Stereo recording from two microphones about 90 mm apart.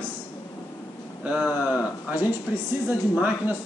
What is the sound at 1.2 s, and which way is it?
A man's voice, 15° right (ahead or behind).